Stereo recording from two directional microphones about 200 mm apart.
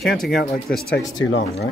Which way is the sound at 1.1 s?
70° left (ahead or behind).